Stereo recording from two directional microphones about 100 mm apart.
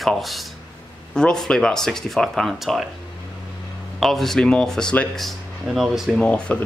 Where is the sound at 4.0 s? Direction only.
Centre (ahead or behind).